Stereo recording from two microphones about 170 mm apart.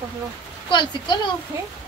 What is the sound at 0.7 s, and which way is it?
Speech, 25° left (ahead or behind).